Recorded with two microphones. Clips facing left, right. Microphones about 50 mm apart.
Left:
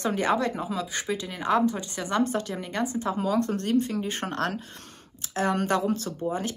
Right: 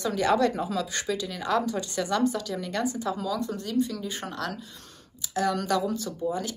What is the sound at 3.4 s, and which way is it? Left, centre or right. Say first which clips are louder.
Speech: left 3 dB; left.